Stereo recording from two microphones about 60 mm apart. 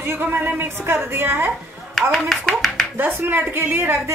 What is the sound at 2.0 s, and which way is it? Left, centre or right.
Speech, centre.